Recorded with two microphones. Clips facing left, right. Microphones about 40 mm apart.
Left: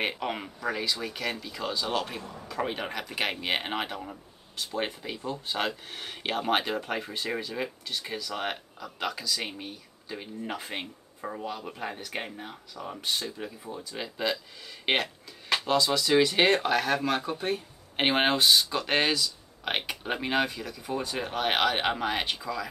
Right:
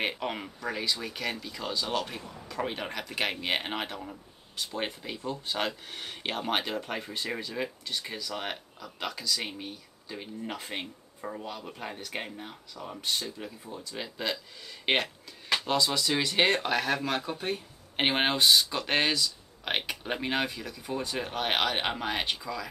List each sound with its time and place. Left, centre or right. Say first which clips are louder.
0.0 s speech: left 1 dB; centre